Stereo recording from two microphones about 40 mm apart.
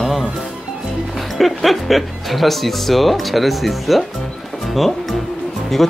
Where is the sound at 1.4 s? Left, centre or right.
Centre.